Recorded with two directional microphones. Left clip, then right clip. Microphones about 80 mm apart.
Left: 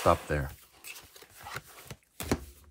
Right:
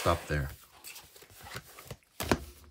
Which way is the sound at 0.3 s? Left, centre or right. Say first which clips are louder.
Left 3 dB; centre.